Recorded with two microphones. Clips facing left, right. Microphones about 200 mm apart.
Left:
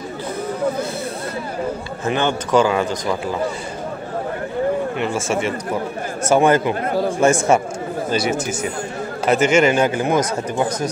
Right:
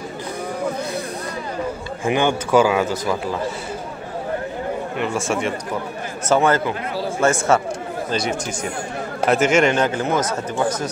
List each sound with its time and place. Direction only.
2.0 s speech: 10° right (ahead or behind)
4.9 s speech: centre (ahead or behind)
6.2 s speech: 15° left (ahead or behind)